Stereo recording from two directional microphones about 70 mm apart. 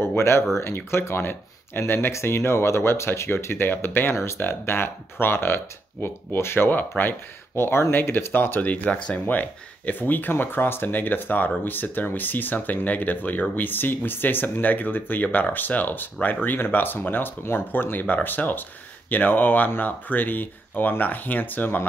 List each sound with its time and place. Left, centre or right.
0.0 s speech: left